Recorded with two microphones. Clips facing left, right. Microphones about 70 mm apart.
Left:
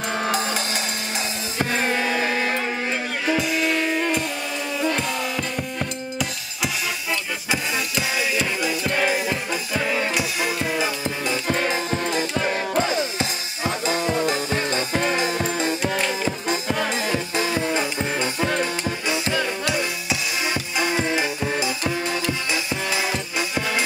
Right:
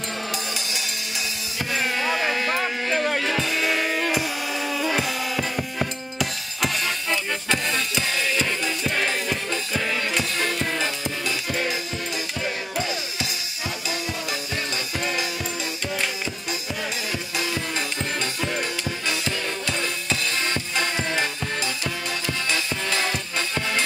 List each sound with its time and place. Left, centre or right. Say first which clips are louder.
1.6 s music: left 3 dB; left
3.3 s music: left 2 dB; centre
11.5 s music: left 4 dB; left
17.1 s music: left 5 dB; left